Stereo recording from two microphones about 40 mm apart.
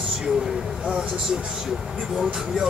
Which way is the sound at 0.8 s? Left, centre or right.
Centre.